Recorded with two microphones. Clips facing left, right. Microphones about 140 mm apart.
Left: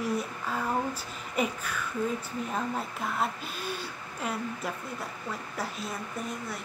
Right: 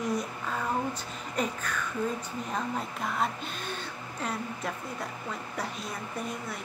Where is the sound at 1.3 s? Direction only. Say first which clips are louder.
Left 1 dB; 5° left (ahead or behind).